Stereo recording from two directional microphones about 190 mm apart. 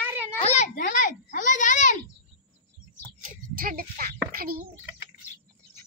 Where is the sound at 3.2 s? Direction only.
45° right (ahead or behind).